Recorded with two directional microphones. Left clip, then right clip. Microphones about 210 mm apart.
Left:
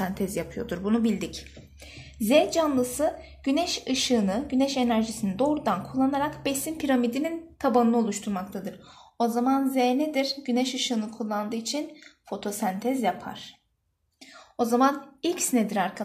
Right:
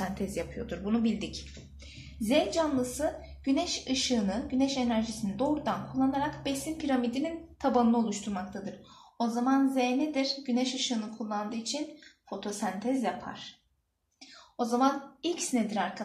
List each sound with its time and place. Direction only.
0.0 s a woman's voice: 40° left (ahead or behind)
14.6 s a woman's voice: 50° left (ahead or behind)